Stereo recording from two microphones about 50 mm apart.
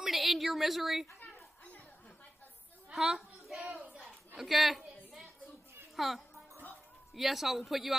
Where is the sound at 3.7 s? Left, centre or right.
Right.